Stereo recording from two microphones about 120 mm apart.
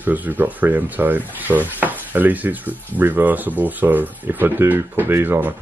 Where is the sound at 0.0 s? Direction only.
15° right (ahead or behind).